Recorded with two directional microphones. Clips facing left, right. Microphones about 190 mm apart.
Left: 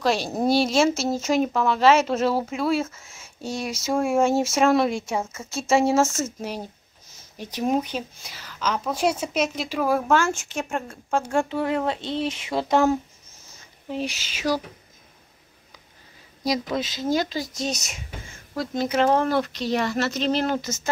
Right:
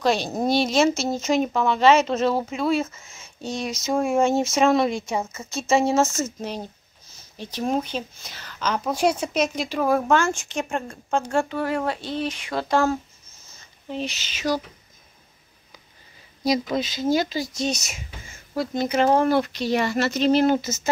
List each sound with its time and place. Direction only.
0.0 s speech: 5° left (ahead or behind)
11.6 s speech: 20° left (ahead or behind)
16.4 s speech: centre (ahead or behind)